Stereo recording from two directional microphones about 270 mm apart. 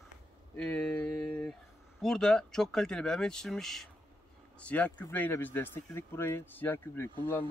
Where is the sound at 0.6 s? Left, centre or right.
Centre.